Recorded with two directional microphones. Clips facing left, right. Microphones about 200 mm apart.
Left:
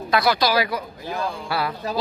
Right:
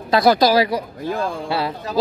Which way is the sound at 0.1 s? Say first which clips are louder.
Right 6 dB; 40° right (ahead or behind).